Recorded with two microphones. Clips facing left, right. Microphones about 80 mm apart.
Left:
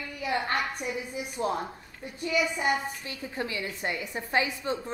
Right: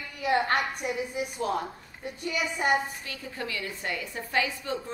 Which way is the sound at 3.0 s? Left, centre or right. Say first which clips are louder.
Left 2 dB; left.